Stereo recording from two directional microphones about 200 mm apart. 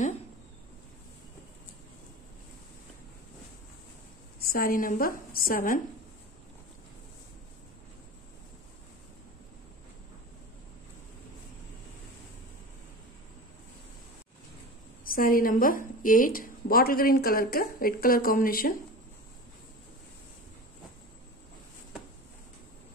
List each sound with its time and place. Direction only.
4.5 s a woman's voice: 45° left (ahead or behind)
15.0 s a woman's voice: 45° left (ahead or behind)